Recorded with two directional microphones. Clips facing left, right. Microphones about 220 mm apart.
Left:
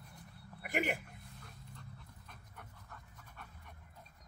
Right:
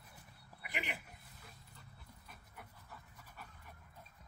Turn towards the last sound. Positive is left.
turn(degrees=-5)  # may be behind; listen again after turning